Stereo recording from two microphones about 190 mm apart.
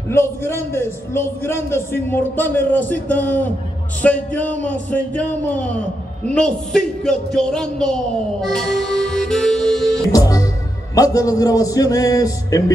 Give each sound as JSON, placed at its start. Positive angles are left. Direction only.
{"t": 0.1, "sound": "a man's voice", "side_deg": 15}
{"t": 10.1, "sound": "music", "side_deg": 20}
{"t": 11.0, "sound": "a man's voice", "side_deg": 20}